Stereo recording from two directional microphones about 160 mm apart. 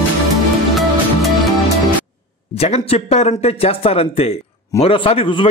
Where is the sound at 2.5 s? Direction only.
40° left (ahead or behind).